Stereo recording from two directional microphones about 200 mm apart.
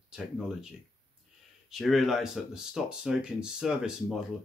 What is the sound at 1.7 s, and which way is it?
Speech, centre (ahead or behind).